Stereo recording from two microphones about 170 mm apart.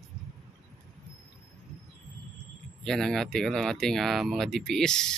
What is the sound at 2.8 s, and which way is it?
Speech, 5° left (ahead or behind).